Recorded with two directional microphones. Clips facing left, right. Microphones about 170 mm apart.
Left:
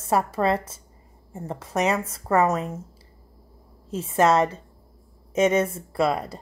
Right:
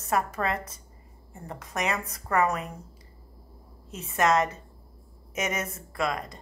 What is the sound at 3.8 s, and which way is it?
Speech, 30° left (ahead or behind).